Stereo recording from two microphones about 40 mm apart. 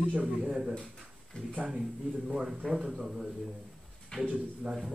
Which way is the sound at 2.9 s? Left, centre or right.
Centre.